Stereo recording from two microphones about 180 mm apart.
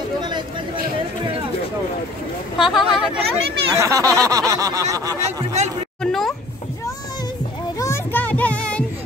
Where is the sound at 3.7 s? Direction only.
15° right (ahead or behind).